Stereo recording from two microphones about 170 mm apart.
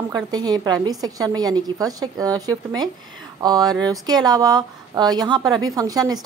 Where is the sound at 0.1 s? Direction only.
25° right (ahead or behind).